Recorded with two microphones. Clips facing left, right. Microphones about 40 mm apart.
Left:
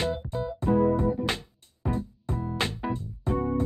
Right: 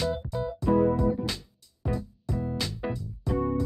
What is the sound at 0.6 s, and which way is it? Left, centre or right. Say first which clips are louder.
Music: even; left.